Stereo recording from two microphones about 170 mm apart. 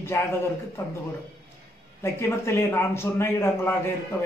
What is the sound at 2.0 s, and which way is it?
A man's voice, 15° left (ahead or behind).